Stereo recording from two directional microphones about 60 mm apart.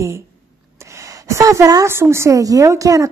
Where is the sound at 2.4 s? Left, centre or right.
Right.